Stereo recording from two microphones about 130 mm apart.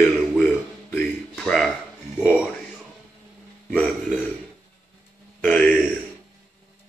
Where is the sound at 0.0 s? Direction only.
Centre (ahead or behind).